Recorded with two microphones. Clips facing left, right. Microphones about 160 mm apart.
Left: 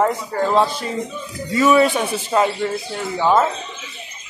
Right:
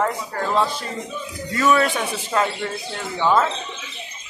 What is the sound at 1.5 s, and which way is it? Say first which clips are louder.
Speech: left 4 dB; 10° left (ahead or behind).